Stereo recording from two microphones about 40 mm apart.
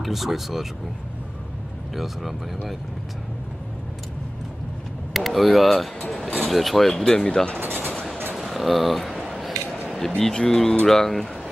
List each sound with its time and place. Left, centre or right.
0.0 s speech: centre
5.1 s speech: centre
7.6 s a sound: right
8.4 s scissors: centre
9.9 s speech: centre